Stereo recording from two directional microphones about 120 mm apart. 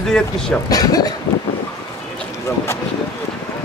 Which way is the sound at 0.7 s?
30° left (ahead or behind).